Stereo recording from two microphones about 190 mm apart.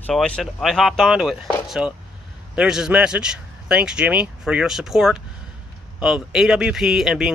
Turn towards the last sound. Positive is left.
turn(degrees=-5)  # may be behind; listen again after turning